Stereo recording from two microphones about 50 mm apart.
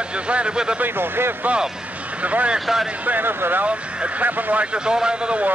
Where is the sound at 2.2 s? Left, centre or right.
Right.